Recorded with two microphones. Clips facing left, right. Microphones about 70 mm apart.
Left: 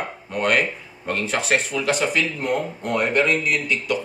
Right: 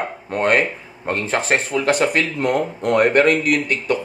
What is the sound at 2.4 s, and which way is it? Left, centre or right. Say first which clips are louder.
Speech: right 4 dB; right.